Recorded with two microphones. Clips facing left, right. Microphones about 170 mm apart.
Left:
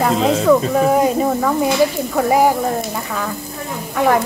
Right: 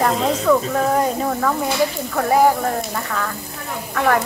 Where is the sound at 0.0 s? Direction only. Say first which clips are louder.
Left 3 dB; 10° left (ahead or behind).